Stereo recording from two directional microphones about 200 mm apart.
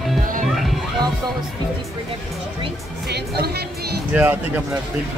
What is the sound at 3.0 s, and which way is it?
Speech, 55° right (ahead or behind).